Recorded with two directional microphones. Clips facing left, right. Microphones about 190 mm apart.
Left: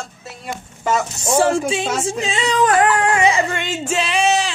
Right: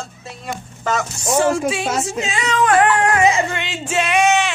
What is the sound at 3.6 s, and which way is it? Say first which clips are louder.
Female singing: left 3 dB; 45° left (ahead or behind).